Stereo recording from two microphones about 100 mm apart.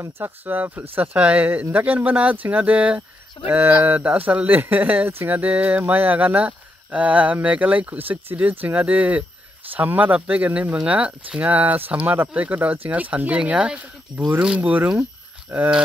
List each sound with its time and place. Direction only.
0.0 s speech: 20° right (ahead or behind)